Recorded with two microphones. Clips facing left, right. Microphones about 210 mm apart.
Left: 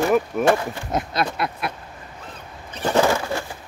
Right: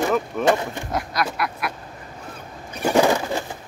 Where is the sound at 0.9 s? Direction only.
25° left (ahead or behind).